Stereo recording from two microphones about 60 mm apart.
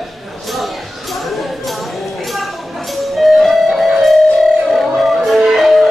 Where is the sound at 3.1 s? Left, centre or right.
Centre.